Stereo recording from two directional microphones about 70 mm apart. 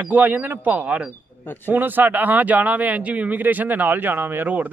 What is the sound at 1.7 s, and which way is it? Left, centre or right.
Speech, right.